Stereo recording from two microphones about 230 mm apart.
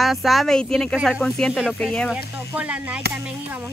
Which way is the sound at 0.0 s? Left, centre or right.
Centre.